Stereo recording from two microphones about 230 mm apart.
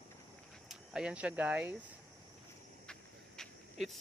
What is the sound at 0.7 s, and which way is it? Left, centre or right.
Speech, centre.